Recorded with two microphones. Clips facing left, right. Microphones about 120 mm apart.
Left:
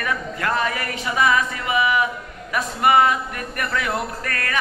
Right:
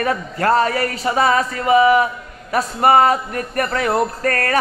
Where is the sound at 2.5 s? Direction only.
40° right (ahead or behind).